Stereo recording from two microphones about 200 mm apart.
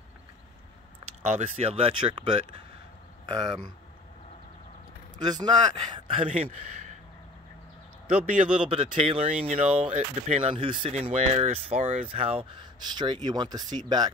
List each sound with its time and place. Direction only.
1.2 s speech: 35° right (ahead or behind)
3.3 s speech: 20° right (ahead or behind)
5.2 s speech: 20° right (ahead or behind)
6.2 s speech: 35° right (ahead or behind)
8.6 s speech: 30° right (ahead or behind)